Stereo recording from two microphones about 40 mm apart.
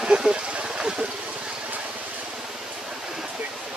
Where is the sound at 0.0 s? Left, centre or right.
Right.